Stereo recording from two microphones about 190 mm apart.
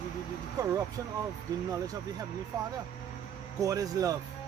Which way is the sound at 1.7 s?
20° right (ahead or behind).